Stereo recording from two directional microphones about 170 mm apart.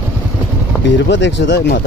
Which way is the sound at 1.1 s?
90° left.